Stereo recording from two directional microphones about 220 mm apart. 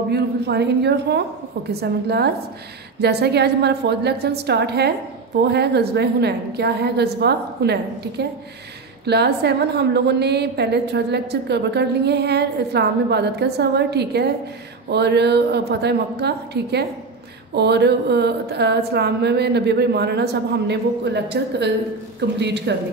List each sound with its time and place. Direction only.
0.1 s a woman's voice: 50° right (ahead or behind)